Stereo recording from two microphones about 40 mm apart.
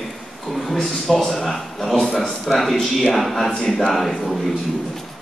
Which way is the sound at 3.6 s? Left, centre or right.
Centre.